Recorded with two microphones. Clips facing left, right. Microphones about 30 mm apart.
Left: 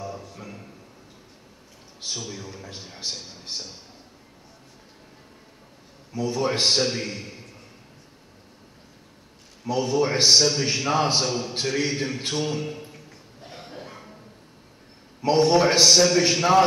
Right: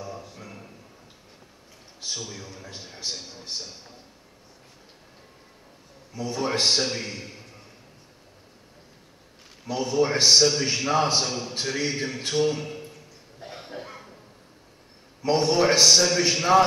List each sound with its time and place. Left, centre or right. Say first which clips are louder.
2.0 s a man's voice: left 1 dB; centre
6.1 s a man's voice: left 2 dB; centre
9.7 s a man's voice: left 1 dB; centre
13.4 s cough: right 2 dB; centre
15.2 s a man's voice: left 2 dB; centre